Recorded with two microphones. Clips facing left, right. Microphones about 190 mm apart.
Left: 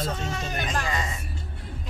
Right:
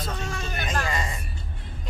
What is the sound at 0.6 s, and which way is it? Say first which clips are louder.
Speech: right 2 dB; centre (ahead or behind).